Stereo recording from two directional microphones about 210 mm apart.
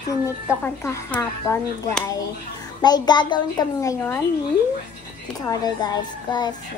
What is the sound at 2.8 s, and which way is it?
A child's voice, 20° left (ahead or behind).